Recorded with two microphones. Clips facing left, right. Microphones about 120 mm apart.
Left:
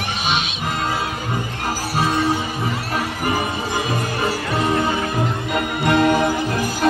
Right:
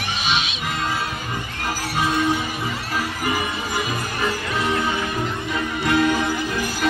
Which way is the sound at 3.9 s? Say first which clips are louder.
Left 3 dB; 35° left (ahead or behind).